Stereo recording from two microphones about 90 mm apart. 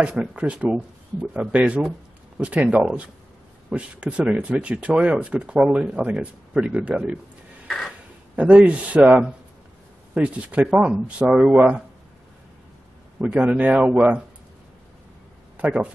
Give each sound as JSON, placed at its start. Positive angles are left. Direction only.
{"t": 0.0, "sound": "speech", "side_deg": -5}
{"t": 7.6, "sound": "a sound", "side_deg": 0}
{"t": 8.4, "sound": "speech", "side_deg": -15}
{"t": 13.2, "sound": "speech", "side_deg": -15}
{"t": 15.5, "sound": "a man's voice", "side_deg": -15}